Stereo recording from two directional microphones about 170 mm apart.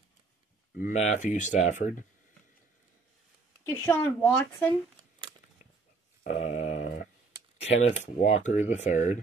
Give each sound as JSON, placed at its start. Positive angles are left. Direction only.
{"t": 0.7, "sound": "speech", "side_deg": 45}
{"t": 3.6, "sound": "a woman's voice", "side_deg": 15}
{"t": 6.2, "sound": "a sound", "side_deg": 40}
{"t": 7.6, "sound": "speech", "side_deg": 40}